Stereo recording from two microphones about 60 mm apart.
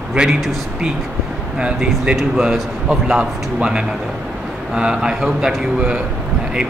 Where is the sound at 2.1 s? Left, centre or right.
Centre.